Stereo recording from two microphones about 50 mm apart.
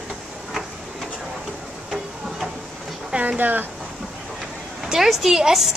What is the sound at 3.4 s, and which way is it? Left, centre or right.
Speech, right.